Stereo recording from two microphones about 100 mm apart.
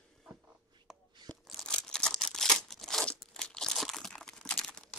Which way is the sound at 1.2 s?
5° left (ahead or behind).